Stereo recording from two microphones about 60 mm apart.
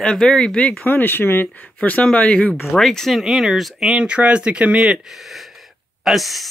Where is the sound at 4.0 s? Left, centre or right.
Centre.